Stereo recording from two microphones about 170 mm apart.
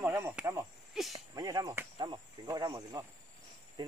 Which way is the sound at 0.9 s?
Centre (ahead or behind).